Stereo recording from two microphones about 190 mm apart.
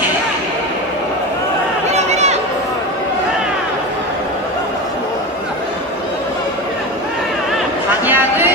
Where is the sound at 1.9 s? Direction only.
35° right (ahead or behind).